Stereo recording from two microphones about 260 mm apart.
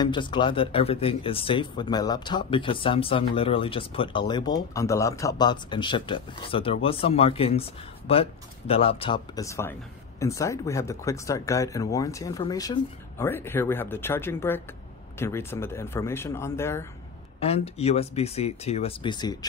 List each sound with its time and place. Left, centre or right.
0.0 s speech: centre
17.4 s speech: left